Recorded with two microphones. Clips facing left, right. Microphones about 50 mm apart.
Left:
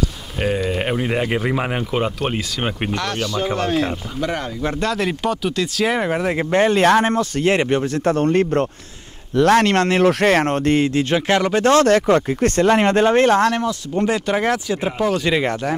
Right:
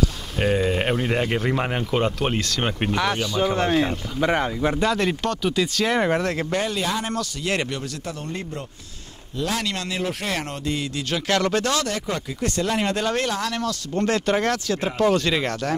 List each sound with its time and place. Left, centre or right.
0.6 s speech: centre
2.9 s speech: centre
6.3 s speech: left
6.8 s speech: left
7.5 s speech: left
11.6 s speech: left
13.6 s speech: left